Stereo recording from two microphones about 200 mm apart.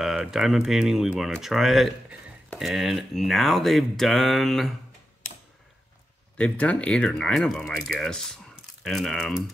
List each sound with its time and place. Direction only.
0.0 s speech: centre (ahead or behind)
6.3 s speech: 5° left (ahead or behind)